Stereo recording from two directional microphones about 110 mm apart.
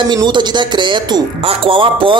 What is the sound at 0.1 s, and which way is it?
Speech, 40° right (ahead or behind).